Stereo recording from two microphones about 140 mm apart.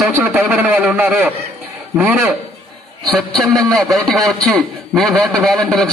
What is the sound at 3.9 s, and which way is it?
A man's voice, centre (ahead or behind).